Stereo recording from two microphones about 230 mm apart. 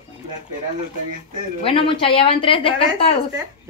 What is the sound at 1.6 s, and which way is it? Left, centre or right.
A woman's voice, left.